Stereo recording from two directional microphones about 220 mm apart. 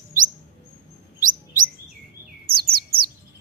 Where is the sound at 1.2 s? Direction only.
35° right (ahead or behind).